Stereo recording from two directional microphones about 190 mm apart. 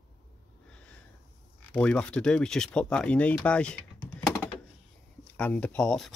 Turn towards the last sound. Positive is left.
turn(degrees=5)  # may be behind; listen again after turning